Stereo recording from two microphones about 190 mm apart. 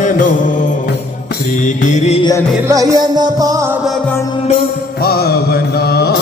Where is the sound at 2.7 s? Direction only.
20° right (ahead or behind).